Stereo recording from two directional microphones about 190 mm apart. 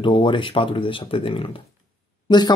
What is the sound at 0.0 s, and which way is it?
Speech, 25° left (ahead or behind).